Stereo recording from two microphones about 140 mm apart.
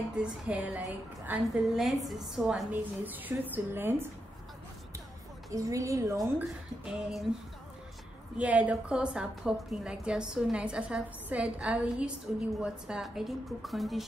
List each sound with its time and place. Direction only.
0.1 s a woman's voice: 10° right (ahead or behind)
1.8 s a woman's voice: centre (ahead or behind)
5.5 s a woman's voice: 25° right (ahead or behind)
6.2 s a woman's voice: 10° right (ahead or behind)
8.4 s a woman's voice: 10° right (ahead or behind)